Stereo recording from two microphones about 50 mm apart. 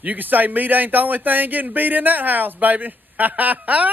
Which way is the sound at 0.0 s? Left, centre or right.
Right.